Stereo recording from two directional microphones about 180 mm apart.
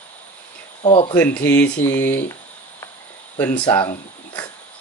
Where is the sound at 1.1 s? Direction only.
10° left (ahead or behind).